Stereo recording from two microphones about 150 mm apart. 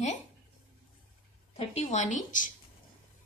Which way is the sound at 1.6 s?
45° left (ahead or behind).